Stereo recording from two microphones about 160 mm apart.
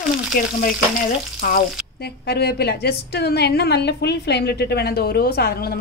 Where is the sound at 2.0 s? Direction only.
85° left.